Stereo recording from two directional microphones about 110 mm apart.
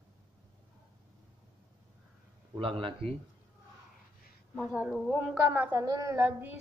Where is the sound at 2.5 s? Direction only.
50° right (ahead or behind).